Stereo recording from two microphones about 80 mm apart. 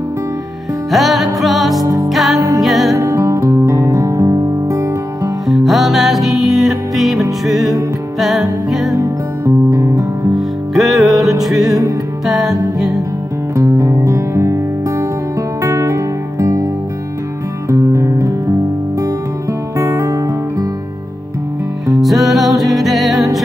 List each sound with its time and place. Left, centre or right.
0.9 s music: centre
3.0 s music: right
5.5 s music: centre
8.9 s music: right
10.3 s music: centre
13.6 s music: right
17.6 s music: right
19.8 s music: right
21.9 s music: centre